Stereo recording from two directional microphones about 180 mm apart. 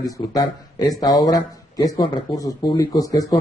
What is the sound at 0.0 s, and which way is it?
A man's voice, 20° left (ahead or behind).